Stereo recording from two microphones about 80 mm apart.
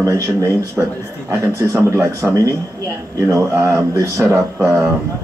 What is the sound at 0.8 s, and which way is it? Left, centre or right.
Speech, centre.